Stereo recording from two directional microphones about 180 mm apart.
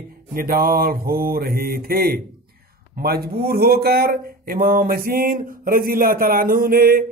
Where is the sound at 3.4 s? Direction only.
60° right (ahead or behind).